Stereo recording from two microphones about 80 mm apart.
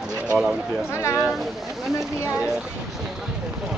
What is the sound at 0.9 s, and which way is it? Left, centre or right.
Speech, left.